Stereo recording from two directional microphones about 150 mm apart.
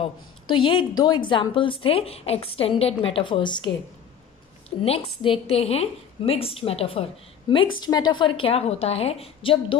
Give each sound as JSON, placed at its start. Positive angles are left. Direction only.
{"t": 0.0, "sound": "a woman's voice", "side_deg": 35}